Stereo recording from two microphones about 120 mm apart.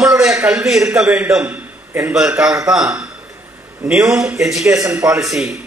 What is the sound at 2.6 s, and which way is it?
A man's voice, 5° right (ahead or behind).